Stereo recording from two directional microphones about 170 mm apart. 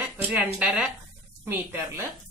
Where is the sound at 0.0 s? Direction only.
10° right (ahead or behind).